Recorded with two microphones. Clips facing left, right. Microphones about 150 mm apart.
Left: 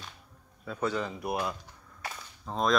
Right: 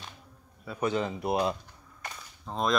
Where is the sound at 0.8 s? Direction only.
20° right (ahead or behind).